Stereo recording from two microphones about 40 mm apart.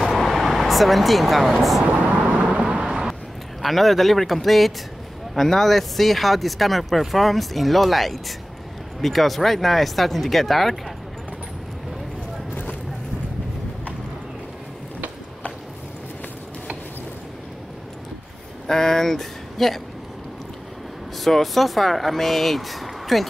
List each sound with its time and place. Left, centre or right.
0.1 s vehicle: centre
2.0 s vehicle: right
2.9 s a sound: centre
3.6 s speech: centre
18.7 s speech: centre
21.2 s speech: centre